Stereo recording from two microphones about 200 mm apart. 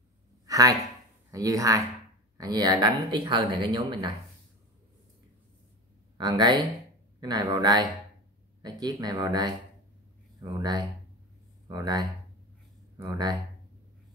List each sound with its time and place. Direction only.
0.5 s a sound: 15° right (ahead or behind)
1.3 s speech: 15° right (ahead or behind)
6.1 s speech: 20° right (ahead or behind)